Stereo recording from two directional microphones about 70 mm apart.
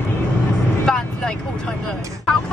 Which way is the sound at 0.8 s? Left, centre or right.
Centre.